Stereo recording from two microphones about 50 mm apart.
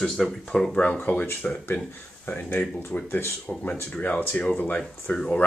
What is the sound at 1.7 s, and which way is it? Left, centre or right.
Speech, left.